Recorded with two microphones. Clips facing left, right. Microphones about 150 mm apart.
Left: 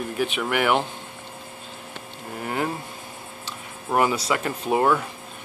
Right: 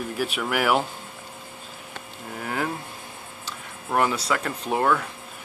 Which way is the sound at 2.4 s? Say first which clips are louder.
Left 2 dB; 5° left (ahead or behind).